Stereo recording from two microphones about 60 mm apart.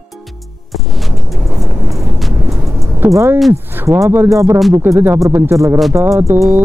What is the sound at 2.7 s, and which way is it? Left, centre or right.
Music, right.